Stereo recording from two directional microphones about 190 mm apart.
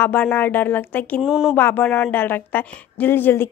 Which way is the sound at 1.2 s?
5° right (ahead or behind).